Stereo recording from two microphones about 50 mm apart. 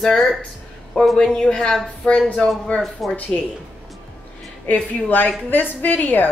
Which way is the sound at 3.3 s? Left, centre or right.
Centre.